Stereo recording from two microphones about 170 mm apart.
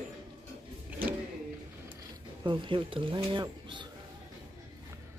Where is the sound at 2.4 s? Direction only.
30° right (ahead or behind).